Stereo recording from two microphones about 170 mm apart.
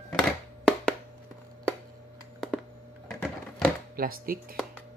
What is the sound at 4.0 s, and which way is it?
Speech, 60° right (ahead or behind).